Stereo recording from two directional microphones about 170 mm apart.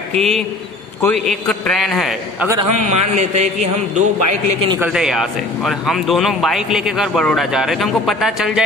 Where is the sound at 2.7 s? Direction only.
45° right (ahead or behind).